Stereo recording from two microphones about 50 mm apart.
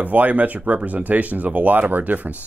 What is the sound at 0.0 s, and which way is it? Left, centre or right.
Speech, right.